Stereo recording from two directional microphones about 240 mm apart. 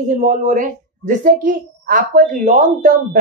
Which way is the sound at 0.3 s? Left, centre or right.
Right.